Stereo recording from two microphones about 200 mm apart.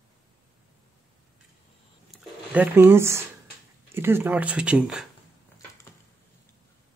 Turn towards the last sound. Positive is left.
turn(degrees=-5)  # may be behind; listen again after turning